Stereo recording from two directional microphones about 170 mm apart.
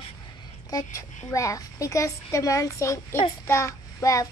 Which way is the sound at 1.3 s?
20° left (ahead or behind).